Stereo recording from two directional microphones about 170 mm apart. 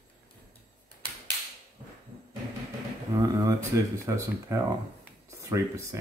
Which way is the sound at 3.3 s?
20° right (ahead or behind).